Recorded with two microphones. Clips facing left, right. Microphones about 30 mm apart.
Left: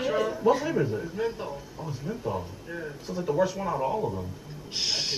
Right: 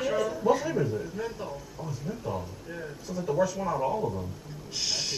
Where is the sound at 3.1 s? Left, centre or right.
Left.